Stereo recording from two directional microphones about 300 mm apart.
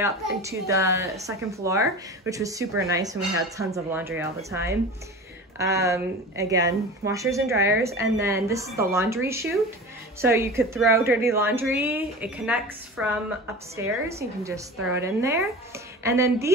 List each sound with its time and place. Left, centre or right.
0.0 s speech: centre